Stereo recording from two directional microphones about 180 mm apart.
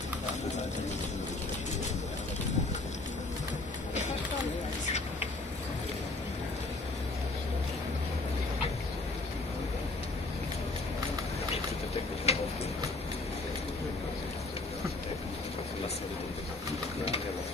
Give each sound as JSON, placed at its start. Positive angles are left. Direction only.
{"t": 12.3, "sound": "tick-tock", "side_deg": 35}